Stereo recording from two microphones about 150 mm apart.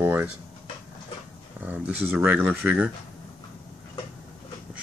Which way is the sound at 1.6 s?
10° right (ahead or behind).